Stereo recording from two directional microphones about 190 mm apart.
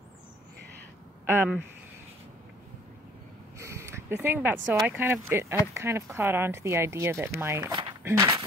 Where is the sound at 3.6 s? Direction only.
15° right (ahead or behind).